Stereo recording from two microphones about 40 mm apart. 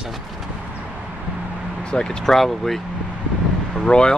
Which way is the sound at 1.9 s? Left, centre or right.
Left.